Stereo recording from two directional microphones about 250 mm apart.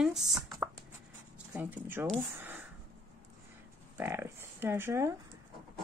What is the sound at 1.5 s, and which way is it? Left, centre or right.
Speech, centre.